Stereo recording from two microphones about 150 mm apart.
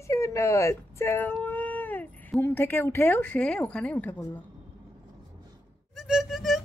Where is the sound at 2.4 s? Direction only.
15° left (ahead or behind).